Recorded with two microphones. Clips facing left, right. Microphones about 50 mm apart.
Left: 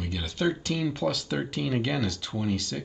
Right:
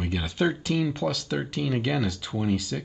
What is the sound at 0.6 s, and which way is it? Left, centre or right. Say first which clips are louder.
Speech: right 2 dB; centre.